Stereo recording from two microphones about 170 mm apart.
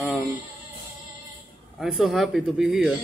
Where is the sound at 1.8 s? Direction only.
Centre (ahead or behind).